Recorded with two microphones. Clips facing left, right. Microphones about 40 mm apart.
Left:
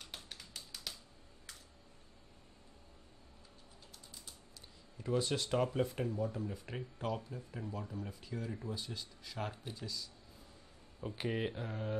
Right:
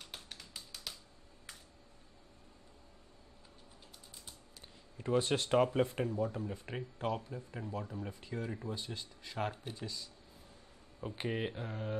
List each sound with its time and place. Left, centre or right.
0.0 s music: centre
4.9 s speech: right
11.0 s speech: centre